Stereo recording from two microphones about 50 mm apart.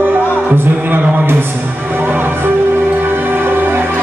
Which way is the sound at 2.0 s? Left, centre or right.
Right.